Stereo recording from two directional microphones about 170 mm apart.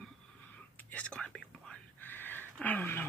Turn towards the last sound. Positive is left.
turn(degrees=10)  # may be behind; listen again after turning